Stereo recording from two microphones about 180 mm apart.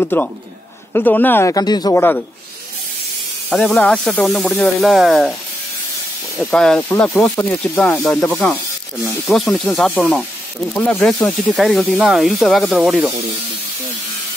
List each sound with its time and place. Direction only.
0.0 s speech: 10° left (ahead or behind)
3.4 s speech: 5° left (ahead or behind)
6.3 s speech: 5° left (ahead or behind)